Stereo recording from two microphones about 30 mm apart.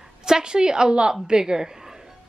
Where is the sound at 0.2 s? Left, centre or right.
Right.